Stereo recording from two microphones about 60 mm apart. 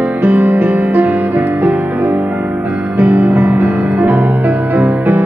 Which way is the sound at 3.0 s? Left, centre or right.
Right.